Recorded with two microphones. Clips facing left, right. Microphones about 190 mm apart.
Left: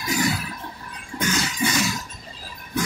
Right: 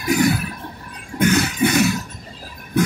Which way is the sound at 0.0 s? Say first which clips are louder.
Right 7 dB; 60° right (ahead or behind).